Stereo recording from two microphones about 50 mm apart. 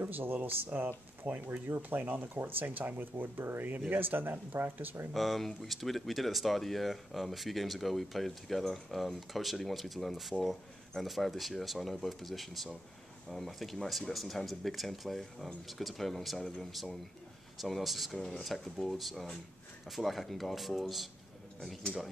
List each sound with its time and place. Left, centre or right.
0.0 s speech: right
5.1 s speech: centre